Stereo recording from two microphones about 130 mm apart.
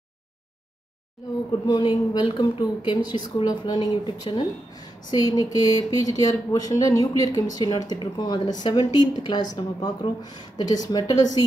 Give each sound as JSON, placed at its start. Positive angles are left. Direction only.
{"t": 1.2, "sound": "speech", "side_deg": 0}
{"t": 1.7, "sound": "speech", "side_deg": 30}